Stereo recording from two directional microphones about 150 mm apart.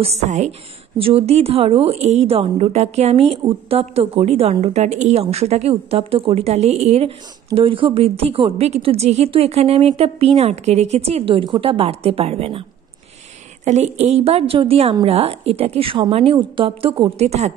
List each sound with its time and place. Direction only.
0.0 s a woman's voice: 45° right (ahead or behind)
13.7 s a woman's voice: 50° right (ahead or behind)